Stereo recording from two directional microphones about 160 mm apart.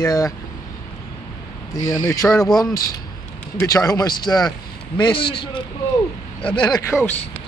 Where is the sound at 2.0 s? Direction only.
20° left (ahead or behind).